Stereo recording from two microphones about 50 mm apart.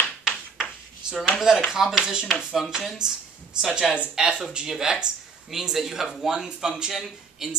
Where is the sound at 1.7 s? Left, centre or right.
Centre.